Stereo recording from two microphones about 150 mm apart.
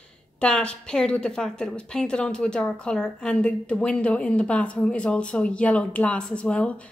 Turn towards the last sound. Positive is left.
turn(degrees=10)  # may be behind; listen again after turning